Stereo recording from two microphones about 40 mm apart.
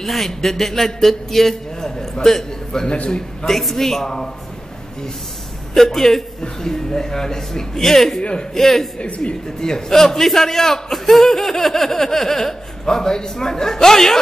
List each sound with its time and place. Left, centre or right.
0.0 s a man's voice: centre
5.8 s a man's voice: centre
8.2 s a man's voice: left
8.5 s a man's voice: centre
9.0 s a man's voice: left
9.6 s a man's voice: centre